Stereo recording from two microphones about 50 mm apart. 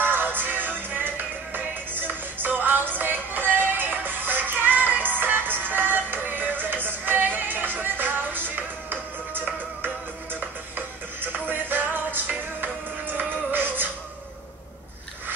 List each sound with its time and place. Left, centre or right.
0.0 s music: right
11.1 s music: right